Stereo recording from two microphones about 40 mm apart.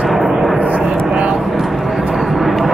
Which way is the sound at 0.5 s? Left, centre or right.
Right.